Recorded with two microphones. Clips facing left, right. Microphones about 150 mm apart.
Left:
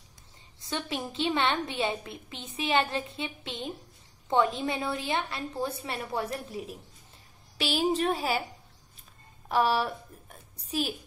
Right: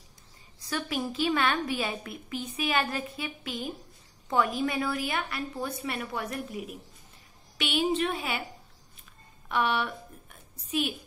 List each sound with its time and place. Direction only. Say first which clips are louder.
0.6 s a woman's voice: right 2 dB; 25° left (ahead or behind)
9.5 s a woman's voice: left 2 dB; 35° left (ahead or behind)